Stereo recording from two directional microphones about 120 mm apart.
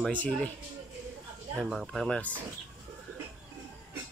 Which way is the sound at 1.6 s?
Centre (ahead or behind).